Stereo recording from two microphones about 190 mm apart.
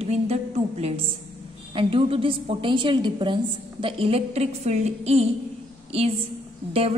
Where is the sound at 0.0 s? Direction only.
35° right (ahead or behind).